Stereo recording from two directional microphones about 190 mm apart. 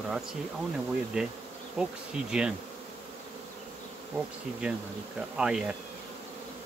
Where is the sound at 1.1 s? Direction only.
5° right (ahead or behind).